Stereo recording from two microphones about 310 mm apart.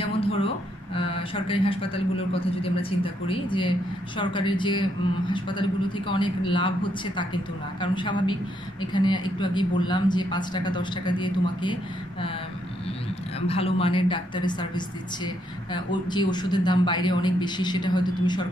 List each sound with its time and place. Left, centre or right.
0.0 s a sound: centre
0.9 s speech: centre
13.5 s speech: centre